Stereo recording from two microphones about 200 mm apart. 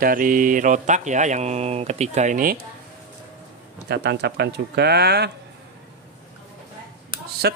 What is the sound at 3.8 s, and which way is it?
Speech, 55° right (ahead or behind).